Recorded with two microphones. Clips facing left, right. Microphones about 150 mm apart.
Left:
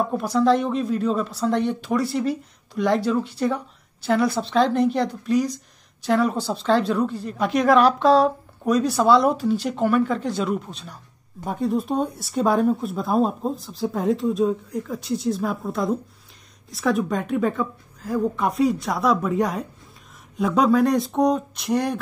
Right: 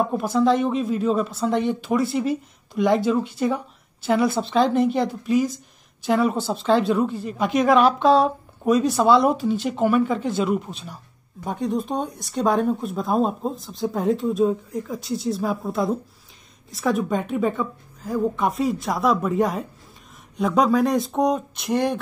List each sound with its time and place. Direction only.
0.0 s speech: centre (ahead or behind)